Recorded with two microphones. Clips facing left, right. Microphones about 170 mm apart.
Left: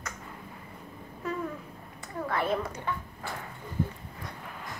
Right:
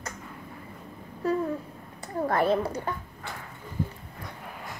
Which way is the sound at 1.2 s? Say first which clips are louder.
Right 7 dB; 35° right (ahead or behind).